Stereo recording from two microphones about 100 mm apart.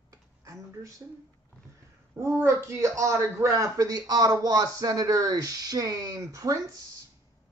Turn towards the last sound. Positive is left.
turn(degrees=-35)  # may be behind; listen again after turning